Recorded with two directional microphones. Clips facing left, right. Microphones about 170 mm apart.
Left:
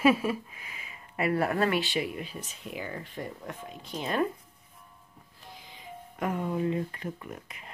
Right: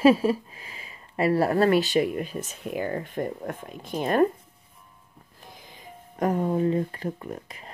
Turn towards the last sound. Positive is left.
turn(degrees=-35)  # may be behind; listen again after turning